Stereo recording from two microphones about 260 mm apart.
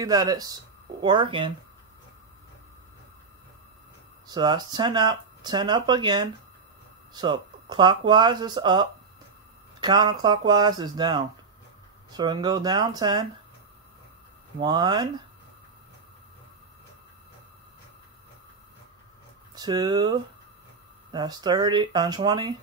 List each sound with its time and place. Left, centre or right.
0.0 s speech: centre
4.3 s speech: centre
14.6 s speech: centre
19.5 s speech: centre